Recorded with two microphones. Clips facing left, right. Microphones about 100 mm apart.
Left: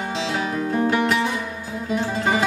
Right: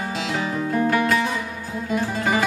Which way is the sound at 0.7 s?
25° left (ahead or behind).